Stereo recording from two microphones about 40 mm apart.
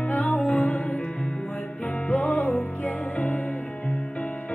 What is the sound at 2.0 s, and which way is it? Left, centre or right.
Music, left.